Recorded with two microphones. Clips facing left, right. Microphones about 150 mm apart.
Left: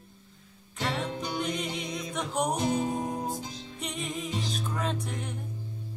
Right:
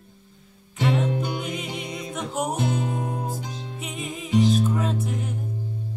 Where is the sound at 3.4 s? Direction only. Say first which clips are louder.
Right 4 dB; 65° right (ahead or behind).